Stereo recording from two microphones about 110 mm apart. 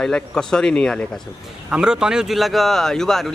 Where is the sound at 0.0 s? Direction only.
5° left (ahead or behind).